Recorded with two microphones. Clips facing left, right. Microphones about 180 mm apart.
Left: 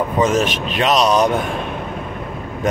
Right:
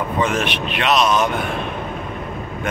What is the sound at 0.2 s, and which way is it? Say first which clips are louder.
Speech: left 4 dB; 40° left (ahead or behind).